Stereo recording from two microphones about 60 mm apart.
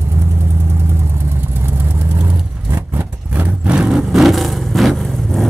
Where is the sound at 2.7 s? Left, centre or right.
Right.